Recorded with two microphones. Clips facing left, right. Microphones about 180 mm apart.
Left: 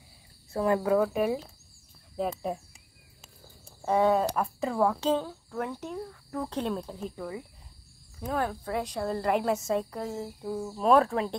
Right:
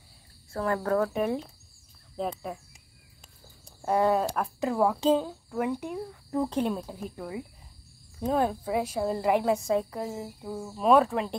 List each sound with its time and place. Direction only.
0.5 s a woman's voice: 15° left (ahead or behind)
3.6 s a sound: centre (ahead or behind)
4.4 s speech: centre (ahead or behind); by 8.5 s 20° right (ahead or behind)
8.6 s a woman's voice: 5° right (ahead or behind)